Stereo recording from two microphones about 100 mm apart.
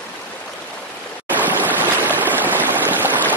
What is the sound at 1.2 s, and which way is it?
Stream, 20° right (ahead or behind).